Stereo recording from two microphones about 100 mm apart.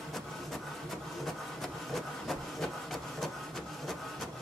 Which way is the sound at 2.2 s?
Centre (ahead or behind).